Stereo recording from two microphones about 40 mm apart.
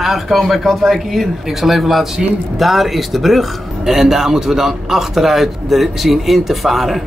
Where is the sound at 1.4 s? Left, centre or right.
Centre.